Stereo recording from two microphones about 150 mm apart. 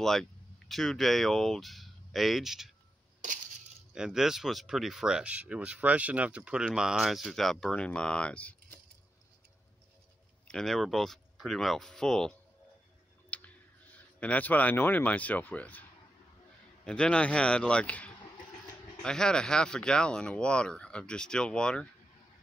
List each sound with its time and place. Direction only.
0.0 s speech: centre (ahead or behind)
3.9 s speech: 5° right (ahead or behind)
10.5 s speech: centre (ahead or behind)
13.3 s clicking: 10° left (ahead or behind)
13.9 s speech: 10° left (ahead or behind)
16.8 s speech: 5° left (ahead or behind)